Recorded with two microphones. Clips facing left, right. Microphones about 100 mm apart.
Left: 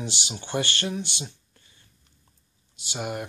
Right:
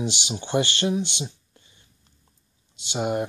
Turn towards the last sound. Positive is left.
turn(degrees=-25)  # may be behind; listen again after turning